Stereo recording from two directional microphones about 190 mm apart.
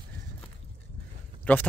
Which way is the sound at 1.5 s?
10° left (ahead or behind).